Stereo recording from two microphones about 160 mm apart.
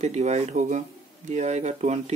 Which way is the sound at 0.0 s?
45° right (ahead or behind).